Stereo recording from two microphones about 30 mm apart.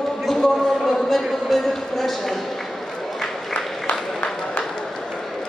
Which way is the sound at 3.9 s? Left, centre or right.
Left.